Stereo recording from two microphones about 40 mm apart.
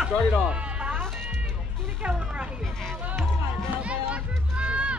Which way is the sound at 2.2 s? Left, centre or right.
Right.